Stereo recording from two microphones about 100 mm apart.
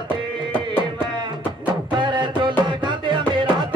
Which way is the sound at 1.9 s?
50° right (ahead or behind).